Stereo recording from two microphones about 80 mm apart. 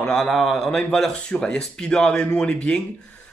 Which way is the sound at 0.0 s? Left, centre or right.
Centre.